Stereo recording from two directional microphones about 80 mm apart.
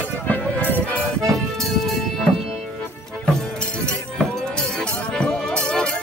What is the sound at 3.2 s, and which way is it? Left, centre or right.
Music, centre.